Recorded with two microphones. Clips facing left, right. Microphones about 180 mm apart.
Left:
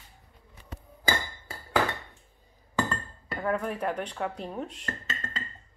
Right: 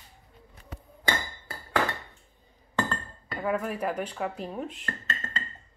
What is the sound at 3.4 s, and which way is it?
Speech, 5° right (ahead or behind).